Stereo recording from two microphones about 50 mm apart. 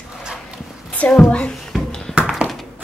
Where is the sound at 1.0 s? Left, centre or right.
Left.